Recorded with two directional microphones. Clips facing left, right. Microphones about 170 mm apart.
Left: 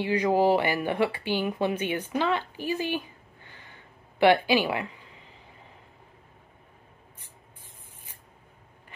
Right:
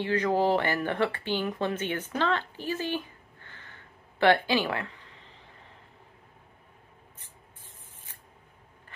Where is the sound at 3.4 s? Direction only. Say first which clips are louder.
Even; 15° left (ahead or behind).